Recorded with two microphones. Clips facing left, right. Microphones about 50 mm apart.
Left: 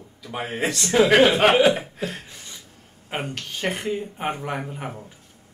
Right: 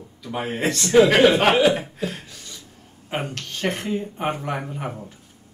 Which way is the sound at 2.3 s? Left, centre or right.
Left.